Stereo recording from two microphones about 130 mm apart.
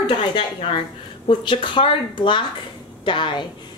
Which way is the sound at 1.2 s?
40° left (ahead or behind).